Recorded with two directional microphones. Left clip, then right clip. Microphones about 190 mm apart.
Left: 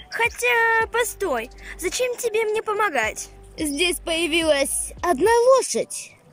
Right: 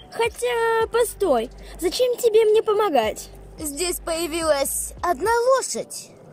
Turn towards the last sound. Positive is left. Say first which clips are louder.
# left 4 dB
turn(degrees=15)  # may be behind; listen again after turning